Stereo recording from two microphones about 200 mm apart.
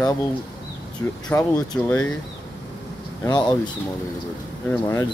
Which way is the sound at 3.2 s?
20° left (ahead or behind).